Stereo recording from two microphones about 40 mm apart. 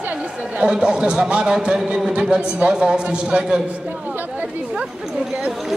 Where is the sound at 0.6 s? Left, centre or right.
Centre.